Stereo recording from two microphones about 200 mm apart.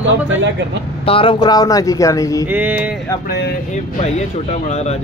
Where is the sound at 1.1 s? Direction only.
25° left (ahead or behind).